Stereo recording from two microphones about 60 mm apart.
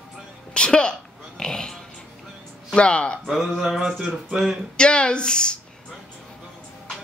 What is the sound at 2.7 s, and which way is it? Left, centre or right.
Speech, centre.